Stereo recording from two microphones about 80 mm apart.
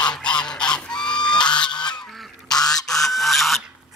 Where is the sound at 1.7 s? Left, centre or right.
Left.